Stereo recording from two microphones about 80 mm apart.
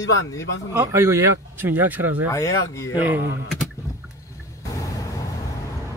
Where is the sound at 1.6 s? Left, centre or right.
Right.